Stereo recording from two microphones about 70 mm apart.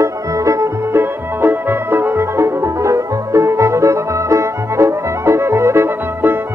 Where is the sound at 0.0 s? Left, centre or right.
Right.